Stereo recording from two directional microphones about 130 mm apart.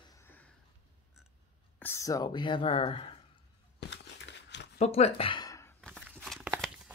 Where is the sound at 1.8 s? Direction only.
20° left (ahead or behind); by 3.1 s 45° left (ahead or behind).